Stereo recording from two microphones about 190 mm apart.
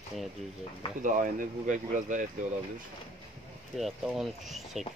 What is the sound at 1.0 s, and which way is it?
Speech, 45° right (ahead or behind).